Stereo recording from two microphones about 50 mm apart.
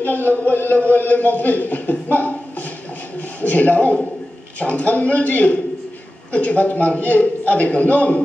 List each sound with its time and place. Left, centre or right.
0.0 s chant: left
0.5 s a man's voice: left
3.2 s a sound: left
4.6 s a man's voice: left